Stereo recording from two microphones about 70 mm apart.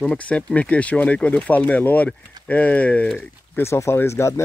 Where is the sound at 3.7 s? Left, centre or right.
Left.